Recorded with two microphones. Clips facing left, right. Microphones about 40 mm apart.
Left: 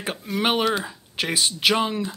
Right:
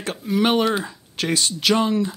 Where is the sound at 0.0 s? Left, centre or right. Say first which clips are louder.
Right 1 dB; centre.